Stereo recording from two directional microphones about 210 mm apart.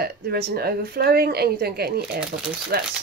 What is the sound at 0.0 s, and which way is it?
Speech, 50° right (ahead or behind).